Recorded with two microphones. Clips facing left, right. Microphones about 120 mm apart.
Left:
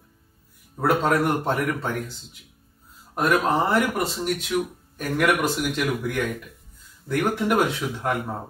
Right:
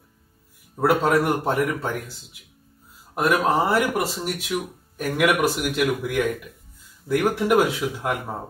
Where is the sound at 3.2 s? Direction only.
5° right (ahead or behind).